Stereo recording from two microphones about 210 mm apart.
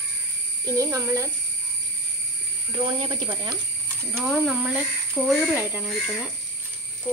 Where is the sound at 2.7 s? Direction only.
25° right (ahead or behind).